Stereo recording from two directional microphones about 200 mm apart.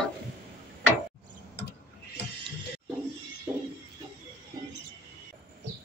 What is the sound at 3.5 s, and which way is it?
Music, 5° right (ahead or behind).